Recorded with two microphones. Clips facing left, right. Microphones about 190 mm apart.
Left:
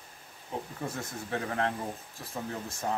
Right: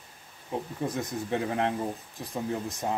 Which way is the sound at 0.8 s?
15° right (ahead or behind).